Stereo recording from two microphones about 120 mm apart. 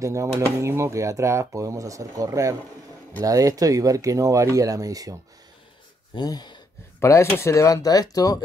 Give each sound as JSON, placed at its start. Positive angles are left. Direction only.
{"t": 0.0, "sound": "speech", "side_deg": -25}
{"t": 6.1, "sound": "speech", "side_deg": 35}
{"t": 7.0, "sound": "speech", "side_deg": 25}